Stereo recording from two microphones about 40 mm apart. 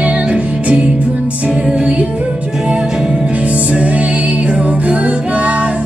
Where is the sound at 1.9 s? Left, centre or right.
Right.